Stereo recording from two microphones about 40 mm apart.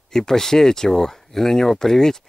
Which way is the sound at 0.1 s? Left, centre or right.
Centre.